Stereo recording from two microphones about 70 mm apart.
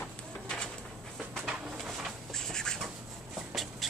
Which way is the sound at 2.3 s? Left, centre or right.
Centre.